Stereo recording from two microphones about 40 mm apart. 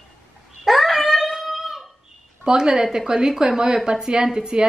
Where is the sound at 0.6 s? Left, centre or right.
Centre.